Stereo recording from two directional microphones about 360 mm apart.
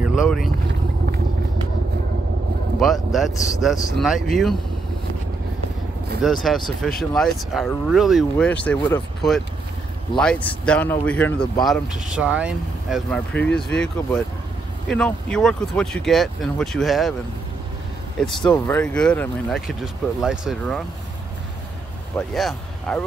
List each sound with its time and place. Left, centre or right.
0.0 s speech: centre
2.8 s speech: centre
6.4 s speech: centre
18.4 s speech: centre
22.1 s speech: centre